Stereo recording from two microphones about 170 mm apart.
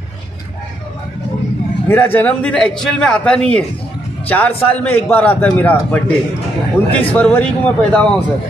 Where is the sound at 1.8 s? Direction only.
10° left (ahead or behind).